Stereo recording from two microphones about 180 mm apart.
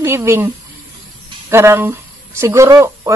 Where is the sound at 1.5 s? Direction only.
15° right (ahead or behind).